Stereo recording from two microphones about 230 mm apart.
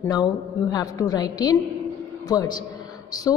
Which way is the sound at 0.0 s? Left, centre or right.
Centre.